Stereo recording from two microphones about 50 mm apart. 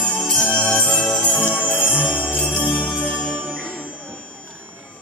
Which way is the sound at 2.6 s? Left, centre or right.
Left.